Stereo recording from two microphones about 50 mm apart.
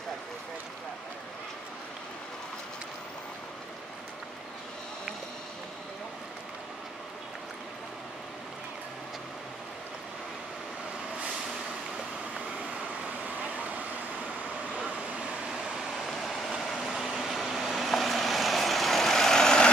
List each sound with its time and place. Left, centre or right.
16.3 s vehicle: centre